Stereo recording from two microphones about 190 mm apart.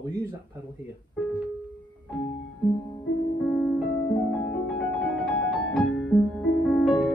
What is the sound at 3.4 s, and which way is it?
Music, 5° left (ahead or behind).